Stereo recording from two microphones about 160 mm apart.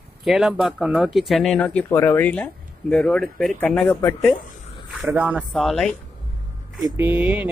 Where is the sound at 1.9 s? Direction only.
15° left (ahead or behind).